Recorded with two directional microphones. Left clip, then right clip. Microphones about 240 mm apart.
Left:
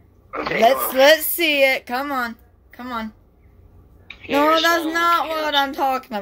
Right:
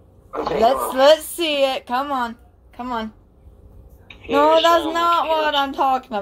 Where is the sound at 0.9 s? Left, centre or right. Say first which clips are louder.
Right 1 dB; left.